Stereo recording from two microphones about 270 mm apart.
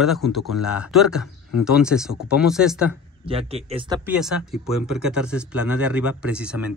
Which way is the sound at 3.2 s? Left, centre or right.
Right.